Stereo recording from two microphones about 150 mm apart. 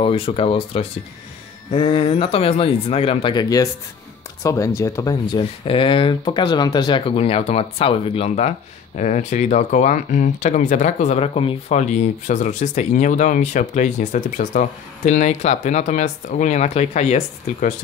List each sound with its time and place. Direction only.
0.0 s speech: 40° left (ahead or behind); by 5.4 s 20° left (ahead or behind)
5.4 s speech: 35° left (ahead or behind)